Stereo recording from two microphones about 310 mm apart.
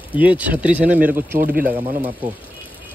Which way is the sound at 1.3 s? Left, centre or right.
Right.